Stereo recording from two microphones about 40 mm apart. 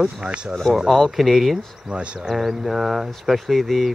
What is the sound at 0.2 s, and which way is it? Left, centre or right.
Speech, right.